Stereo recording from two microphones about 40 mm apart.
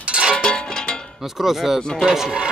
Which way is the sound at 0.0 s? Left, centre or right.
Right.